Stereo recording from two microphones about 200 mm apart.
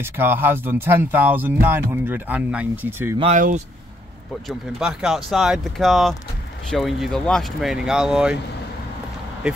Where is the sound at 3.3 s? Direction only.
40° right (ahead or behind).